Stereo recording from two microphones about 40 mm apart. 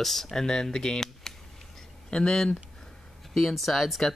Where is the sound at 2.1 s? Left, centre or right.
Left.